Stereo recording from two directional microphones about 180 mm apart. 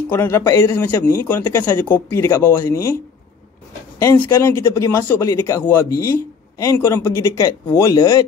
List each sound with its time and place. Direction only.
0.1 s speech: 15° left (ahead or behind)
4.0 s speech: 15° left (ahead or behind)